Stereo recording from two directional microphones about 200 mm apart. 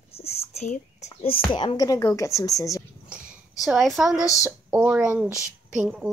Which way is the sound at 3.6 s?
Centre (ahead or behind).